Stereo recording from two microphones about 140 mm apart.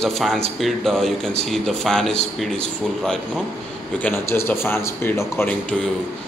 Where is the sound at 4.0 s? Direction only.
15° left (ahead or behind).